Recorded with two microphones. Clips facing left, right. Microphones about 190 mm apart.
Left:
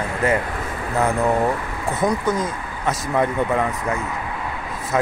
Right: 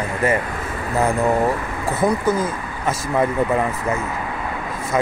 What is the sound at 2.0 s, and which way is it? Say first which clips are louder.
Speech: right 2 dB; 5° right (ahead or behind).